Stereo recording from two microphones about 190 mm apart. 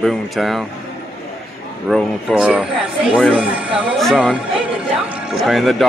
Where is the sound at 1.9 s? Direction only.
Centre (ahead or behind).